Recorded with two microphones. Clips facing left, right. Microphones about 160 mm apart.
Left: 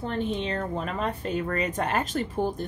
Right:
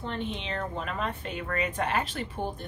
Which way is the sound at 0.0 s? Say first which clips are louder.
Left 6 dB; 40° left (ahead or behind).